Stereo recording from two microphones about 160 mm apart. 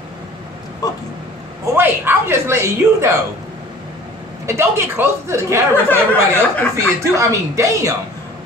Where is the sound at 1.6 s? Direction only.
15° right (ahead or behind).